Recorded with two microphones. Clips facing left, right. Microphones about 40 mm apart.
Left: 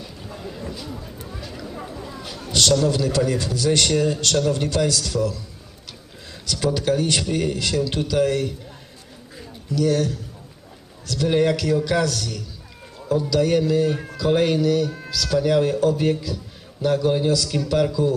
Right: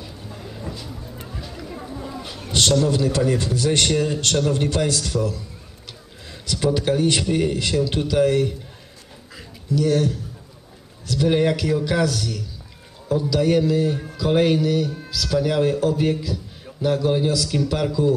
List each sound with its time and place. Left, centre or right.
0.7 s a sound: centre
2.8 s a man's voice: right
6.4 s speech: right
9.8 s speech: right
11.1 s a man's voice: centre